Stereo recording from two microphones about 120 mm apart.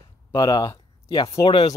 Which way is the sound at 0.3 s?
35° left (ahead or behind).